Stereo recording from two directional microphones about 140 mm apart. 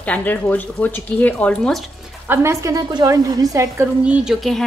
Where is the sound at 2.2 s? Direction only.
15° right (ahead or behind).